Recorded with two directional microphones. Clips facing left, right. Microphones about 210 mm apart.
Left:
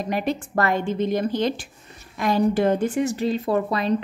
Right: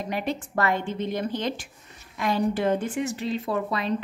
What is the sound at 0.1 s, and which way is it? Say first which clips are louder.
A woman's voice: left 4 dB; 40° left (ahead or behind).